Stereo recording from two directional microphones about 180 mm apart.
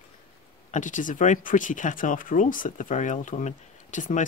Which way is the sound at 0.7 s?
45° left (ahead or behind).